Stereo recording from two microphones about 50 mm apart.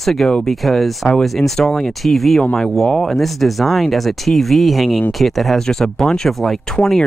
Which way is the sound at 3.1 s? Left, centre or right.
Centre.